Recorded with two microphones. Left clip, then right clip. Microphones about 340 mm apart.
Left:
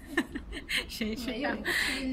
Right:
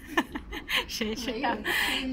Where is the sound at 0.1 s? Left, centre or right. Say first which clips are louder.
Right 3 dB; centre.